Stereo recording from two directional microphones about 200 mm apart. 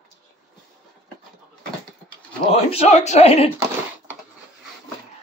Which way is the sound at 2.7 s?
35° left (ahead or behind).